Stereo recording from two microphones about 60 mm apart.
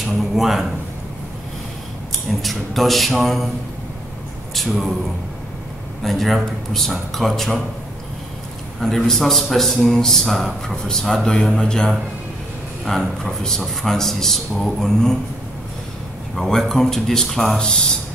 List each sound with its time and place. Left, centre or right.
0.0 s a sound: centre
2.2 s a man's voice: centre
4.6 s a man's voice: centre
6.0 s a man's voice: centre
8.8 s a man's voice: centre
16.3 s a man's voice: centre